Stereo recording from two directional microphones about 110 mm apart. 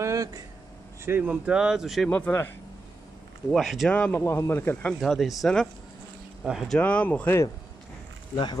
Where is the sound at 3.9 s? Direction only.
15° left (ahead or behind).